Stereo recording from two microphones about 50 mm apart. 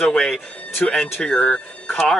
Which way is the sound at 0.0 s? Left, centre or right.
Centre.